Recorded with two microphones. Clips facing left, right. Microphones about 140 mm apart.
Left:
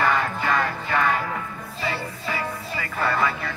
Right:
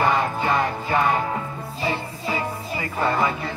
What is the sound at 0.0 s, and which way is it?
Music, 25° right (ahead or behind).